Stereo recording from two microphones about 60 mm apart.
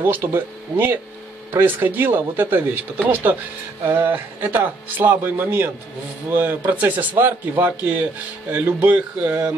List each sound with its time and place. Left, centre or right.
0.0 s a man's voice: right
9.3 s speech: right